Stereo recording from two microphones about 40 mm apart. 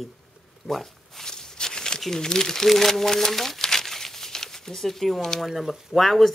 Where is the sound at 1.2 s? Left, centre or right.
Centre.